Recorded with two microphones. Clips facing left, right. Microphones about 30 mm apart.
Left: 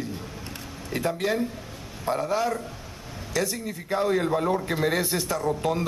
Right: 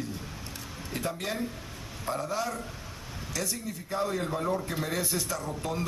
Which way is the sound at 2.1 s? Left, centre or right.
Left.